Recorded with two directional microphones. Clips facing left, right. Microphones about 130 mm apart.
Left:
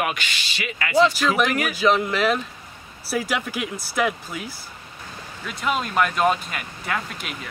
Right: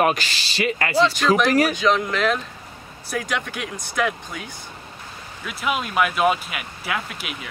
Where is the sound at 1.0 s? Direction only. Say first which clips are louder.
Left 2 dB; centre (ahead or behind).